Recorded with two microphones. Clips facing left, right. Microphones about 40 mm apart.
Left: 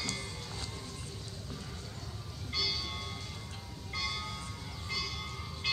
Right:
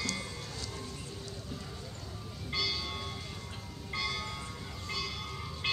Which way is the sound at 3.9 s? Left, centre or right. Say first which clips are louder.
Right 2 dB; centre.